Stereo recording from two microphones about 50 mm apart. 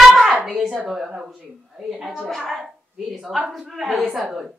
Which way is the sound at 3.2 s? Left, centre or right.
Centre.